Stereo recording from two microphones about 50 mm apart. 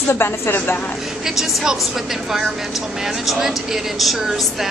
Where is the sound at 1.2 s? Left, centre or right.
Centre.